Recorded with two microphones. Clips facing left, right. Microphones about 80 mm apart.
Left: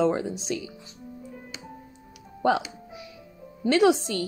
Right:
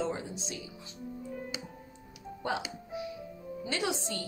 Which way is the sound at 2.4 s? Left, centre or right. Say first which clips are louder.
Left 11 dB; left.